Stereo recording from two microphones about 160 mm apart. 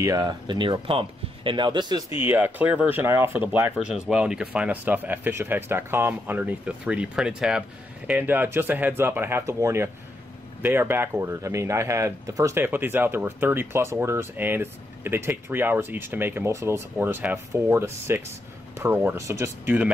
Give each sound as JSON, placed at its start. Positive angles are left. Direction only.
{"t": 0.0, "sound": "speech", "side_deg": -25}
{"t": 2.1, "sound": "speech", "side_deg": -10}